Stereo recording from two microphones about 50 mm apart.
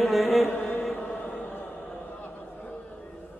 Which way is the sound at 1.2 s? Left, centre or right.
Left.